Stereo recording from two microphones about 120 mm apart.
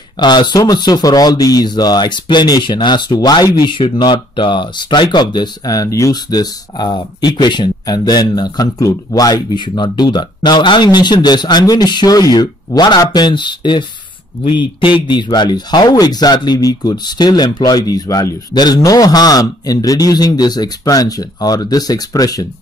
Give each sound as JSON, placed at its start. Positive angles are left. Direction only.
{"t": 0.2, "sound": "speech", "side_deg": 40}